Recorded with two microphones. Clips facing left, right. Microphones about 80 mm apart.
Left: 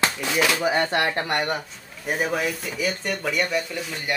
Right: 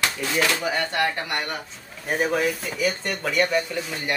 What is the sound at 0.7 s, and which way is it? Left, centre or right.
Speech, left.